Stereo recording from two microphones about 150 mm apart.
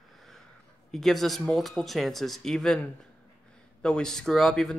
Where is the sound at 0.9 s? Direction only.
Centre (ahead or behind).